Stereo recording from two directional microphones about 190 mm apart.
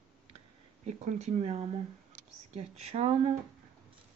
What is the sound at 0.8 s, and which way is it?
Speech, 40° right (ahead or behind).